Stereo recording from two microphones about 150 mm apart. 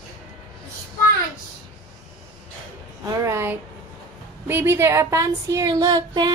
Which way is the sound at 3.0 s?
20° right (ahead or behind).